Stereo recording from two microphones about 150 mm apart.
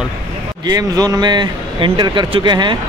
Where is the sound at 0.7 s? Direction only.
25° right (ahead or behind).